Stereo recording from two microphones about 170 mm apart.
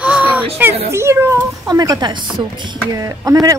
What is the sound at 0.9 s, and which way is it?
Speech, 15° right (ahead or behind).